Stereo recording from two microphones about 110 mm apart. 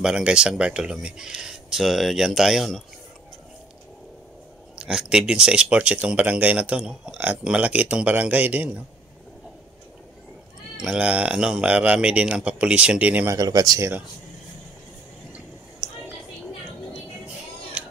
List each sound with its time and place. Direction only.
0.0 s speech: 10° right (ahead or behind)
4.7 s speech: 5° right (ahead or behind)
10.8 s speech: 10° right (ahead or behind)
13.3 s speech: 35° right (ahead or behind)